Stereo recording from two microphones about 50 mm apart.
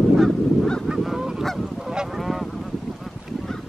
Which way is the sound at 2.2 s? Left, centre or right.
Centre.